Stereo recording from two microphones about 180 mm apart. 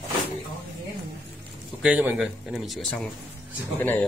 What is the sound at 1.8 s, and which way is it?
A man's voice, 10° right (ahead or behind).